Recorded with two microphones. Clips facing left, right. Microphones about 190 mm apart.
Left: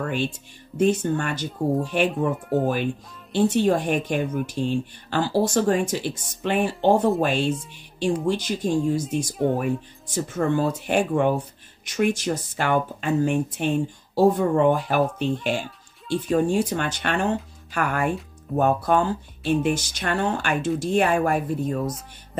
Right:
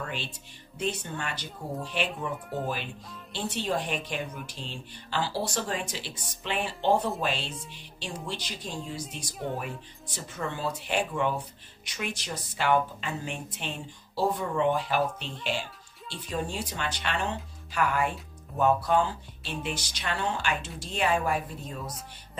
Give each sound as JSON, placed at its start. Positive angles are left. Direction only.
{"t": 0.0, "sound": "speech", "side_deg": 50}